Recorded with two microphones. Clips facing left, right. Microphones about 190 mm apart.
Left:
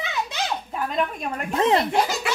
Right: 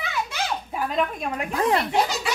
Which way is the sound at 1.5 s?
25° left (ahead or behind).